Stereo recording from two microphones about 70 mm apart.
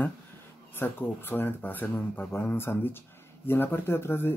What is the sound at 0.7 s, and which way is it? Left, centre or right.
Speech, left.